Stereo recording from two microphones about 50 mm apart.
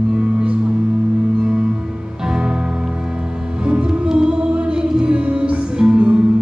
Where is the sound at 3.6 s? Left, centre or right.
Centre.